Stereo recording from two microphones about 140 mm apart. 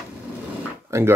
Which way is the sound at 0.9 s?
20° right (ahead or behind).